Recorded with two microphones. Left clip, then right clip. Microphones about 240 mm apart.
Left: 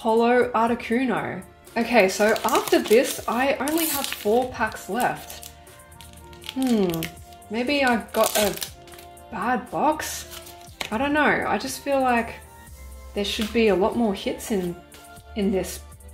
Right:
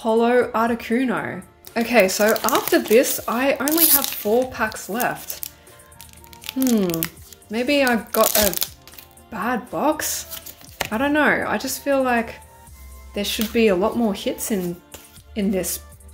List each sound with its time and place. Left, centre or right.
0.0 s speech: centre
6.7 s speech: right